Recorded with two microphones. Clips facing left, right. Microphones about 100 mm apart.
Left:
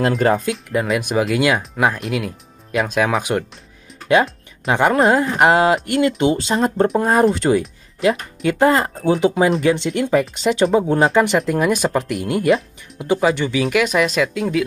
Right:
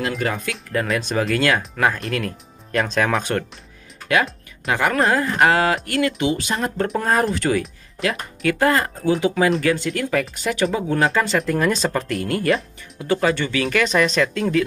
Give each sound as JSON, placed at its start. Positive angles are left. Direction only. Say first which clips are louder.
{"t": 0.0, "sound": "speech", "louder": "left 7 dB", "side_deg": 35}
{"t": 0.8, "sound": "speech", "louder": "left 3 dB", "side_deg": 10}
{"t": 4.1, "sound": "speech", "louder": "left 5 dB", "side_deg": 25}
{"t": 11.1, "sound": "speech", "louder": "left 4 dB", "side_deg": 20}